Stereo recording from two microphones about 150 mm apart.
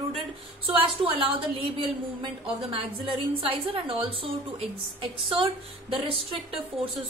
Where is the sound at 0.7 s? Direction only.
35° right (ahead or behind).